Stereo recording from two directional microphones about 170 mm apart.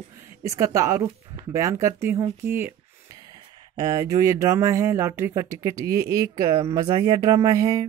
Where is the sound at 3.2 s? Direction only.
25° right (ahead or behind).